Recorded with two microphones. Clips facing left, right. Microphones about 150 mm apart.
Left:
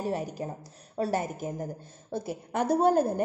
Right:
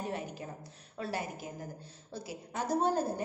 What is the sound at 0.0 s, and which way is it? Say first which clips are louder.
A woman's voice: left 7 dB; 40° left (ahead or behind).